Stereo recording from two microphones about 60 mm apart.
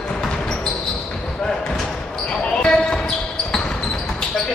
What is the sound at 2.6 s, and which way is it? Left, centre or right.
Basketball bounce, centre.